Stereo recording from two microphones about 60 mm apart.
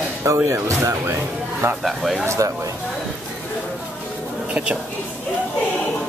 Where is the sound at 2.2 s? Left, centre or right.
Right.